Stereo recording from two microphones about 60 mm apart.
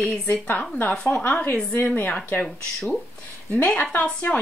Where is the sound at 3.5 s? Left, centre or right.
Left.